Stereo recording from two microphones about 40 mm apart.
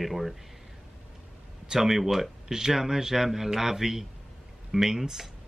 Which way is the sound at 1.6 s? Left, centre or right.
Centre.